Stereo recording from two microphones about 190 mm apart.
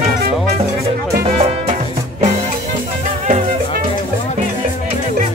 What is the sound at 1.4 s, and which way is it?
Music, 35° right (ahead or behind).